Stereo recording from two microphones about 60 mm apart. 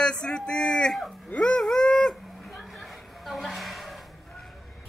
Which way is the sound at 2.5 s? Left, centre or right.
Centre.